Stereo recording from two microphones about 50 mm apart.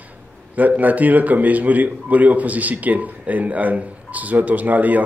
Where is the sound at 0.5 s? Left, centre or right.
Right.